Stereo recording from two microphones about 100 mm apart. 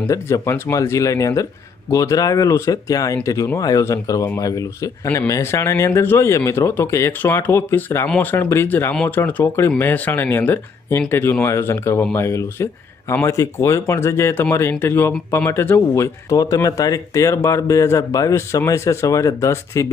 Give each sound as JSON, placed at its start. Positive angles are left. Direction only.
{"t": 0.1, "sound": "speech", "side_deg": 30}
{"t": 5.0, "sound": "speech", "side_deg": 20}